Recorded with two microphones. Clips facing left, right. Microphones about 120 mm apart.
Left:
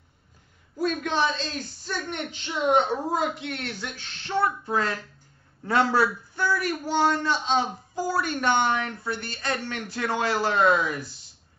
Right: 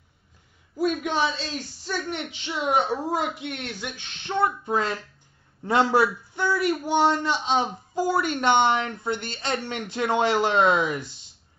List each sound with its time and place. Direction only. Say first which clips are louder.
0.7 s a woman's voice: right 1 dB; 10° right (ahead or behind)